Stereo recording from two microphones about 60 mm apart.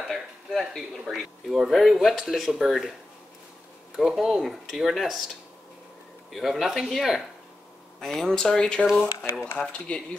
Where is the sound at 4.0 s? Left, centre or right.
Centre.